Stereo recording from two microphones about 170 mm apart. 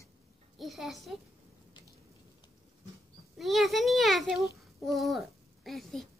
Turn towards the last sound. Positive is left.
turn(degrees=0)  # may be behind; listen again after turning